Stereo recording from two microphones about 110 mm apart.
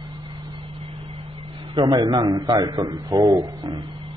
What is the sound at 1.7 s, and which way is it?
A man's voice, 45° right (ahead or behind).